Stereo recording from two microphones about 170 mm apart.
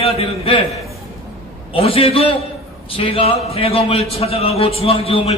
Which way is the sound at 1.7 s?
35° left (ahead or behind).